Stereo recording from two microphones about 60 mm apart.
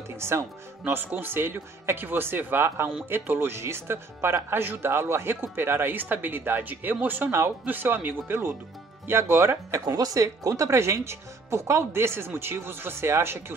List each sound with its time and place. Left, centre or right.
0.1 s speech: right
0.9 s speech: right
9.8 s speech: right